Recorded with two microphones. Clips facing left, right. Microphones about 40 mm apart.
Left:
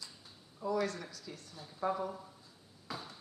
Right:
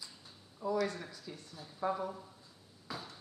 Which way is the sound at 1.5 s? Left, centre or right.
Centre.